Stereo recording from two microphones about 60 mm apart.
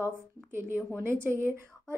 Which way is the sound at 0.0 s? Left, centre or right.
Right.